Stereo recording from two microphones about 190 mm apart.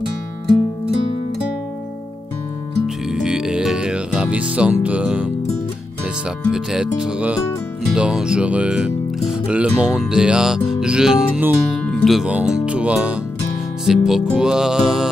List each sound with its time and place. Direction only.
3.1 s music: 5° right (ahead or behind)
6.5 s speech: 5° right (ahead or behind)